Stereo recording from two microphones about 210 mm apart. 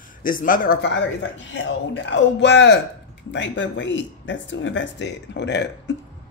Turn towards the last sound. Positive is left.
turn(degrees=55)  # may be behind; listen again after turning